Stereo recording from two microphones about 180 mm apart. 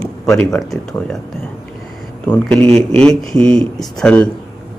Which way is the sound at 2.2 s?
10° left (ahead or behind).